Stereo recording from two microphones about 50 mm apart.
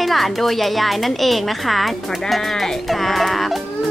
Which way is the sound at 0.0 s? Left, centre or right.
Centre.